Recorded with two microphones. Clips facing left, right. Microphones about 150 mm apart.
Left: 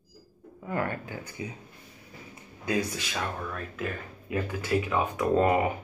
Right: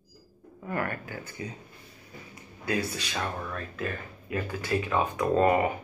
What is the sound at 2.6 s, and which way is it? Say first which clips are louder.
Speech: left 1 dB; 15° left (ahead or behind).